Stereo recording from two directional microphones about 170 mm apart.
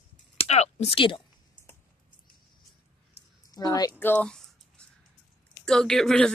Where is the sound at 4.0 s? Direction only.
10° left (ahead or behind).